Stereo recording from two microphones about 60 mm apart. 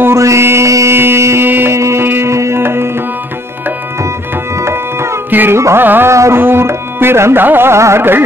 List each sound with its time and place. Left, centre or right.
0.0 s music: right
0.9 s music: right
1.8 s music: right
4.6 s music: right
5.3 s carnatic music: right
5.8 s music: right
6.0 s music: right
6.4 s tabla: right
7.4 s a sound: right